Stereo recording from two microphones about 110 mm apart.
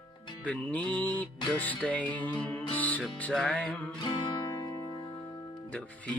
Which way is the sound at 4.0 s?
50° left (ahead or behind).